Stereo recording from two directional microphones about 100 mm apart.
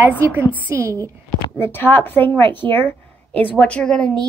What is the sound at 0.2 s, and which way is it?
Speech, 25° right (ahead or behind).